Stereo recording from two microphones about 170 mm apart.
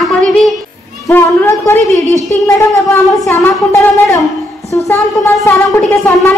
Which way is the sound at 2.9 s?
15° left (ahead or behind).